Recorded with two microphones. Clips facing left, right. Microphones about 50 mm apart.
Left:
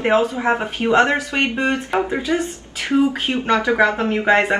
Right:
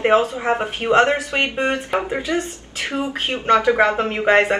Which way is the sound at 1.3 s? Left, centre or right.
Right.